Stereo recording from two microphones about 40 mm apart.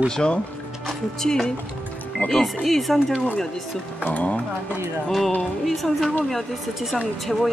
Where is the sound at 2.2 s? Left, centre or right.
Left.